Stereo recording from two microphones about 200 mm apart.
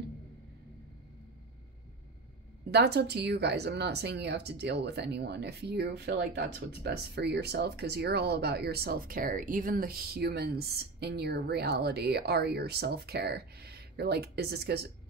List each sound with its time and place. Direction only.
2.7 s speech: 55° right (ahead or behind)